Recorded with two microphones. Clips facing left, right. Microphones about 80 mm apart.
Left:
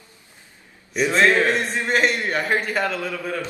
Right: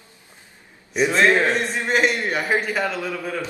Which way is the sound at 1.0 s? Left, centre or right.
Centre.